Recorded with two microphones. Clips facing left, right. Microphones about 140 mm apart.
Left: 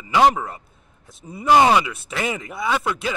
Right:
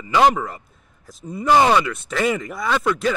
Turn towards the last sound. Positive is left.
turn(degrees=10)  # may be behind; listen again after turning